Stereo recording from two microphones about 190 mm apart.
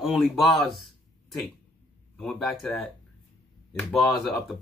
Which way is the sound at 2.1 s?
Centre (ahead or behind).